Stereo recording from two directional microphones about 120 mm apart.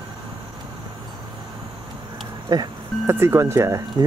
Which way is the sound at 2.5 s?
35° right (ahead or behind).